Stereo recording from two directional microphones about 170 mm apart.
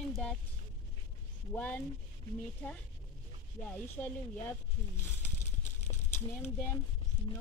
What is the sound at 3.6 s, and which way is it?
Speech, 10° left (ahead or behind).